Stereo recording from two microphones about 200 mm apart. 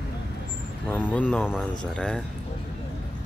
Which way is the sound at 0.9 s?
10° left (ahead or behind).